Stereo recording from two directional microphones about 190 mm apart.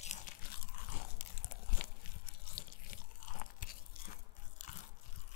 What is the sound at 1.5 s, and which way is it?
Crunch, 50° left (ahead or behind).